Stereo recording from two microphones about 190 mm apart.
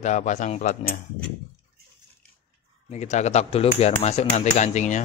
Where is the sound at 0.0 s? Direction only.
40° left (ahead or behind).